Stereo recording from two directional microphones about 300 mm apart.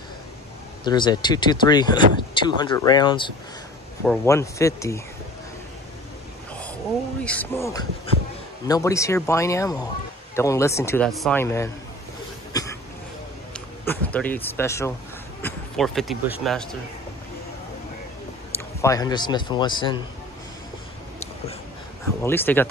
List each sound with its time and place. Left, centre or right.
0.8 s speech: centre
7.2 s speech: centre
8.1 s a man's voice: centre
12.6 s a sound: centre
13.5 s speech: centre
18.8 s speech: centre
22.2 s speech: centre